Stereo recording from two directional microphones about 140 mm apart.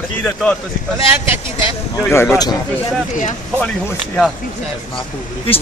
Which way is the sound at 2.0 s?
15° left (ahead or behind).